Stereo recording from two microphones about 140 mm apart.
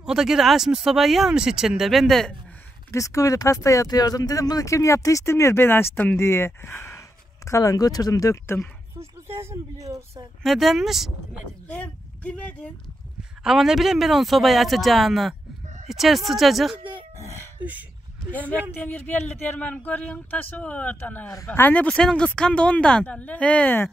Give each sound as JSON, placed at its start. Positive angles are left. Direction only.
{"t": 0.0, "sound": "speech", "side_deg": -5}
{"t": 2.9, "sound": "speech", "side_deg": 20}
{"t": 9.3, "sound": "speech", "side_deg": -15}
{"t": 10.4, "sound": "speech", "side_deg": 0}
{"t": 11.6, "sound": "speech", "side_deg": 10}
{"t": 13.4, "sound": "speech", "side_deg": -5}
{"t": 15.6, "sound": "a sound", "side_deg": -60}
{"t": 15.9, "sound": "speech", "side_deg": 0}
{"t": 17.2, "sound": "a sound", "side_deg": 20}
{"t": 18.3, "sound": "speech", "side_deg": 10}